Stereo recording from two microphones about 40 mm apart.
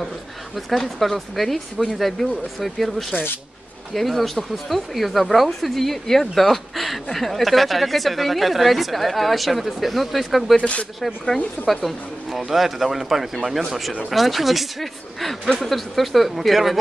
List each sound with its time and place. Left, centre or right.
0.7 s speech: centre
10.6 s speech: left
11.6 s speech: centre